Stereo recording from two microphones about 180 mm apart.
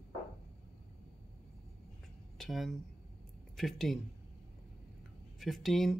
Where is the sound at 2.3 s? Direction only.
Centre (ahead or behind).